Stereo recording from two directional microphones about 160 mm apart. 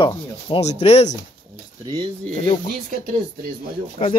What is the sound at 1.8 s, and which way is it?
Speech, 25° right (ahead or behind).